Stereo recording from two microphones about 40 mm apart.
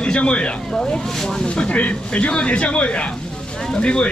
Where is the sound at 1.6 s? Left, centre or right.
Left.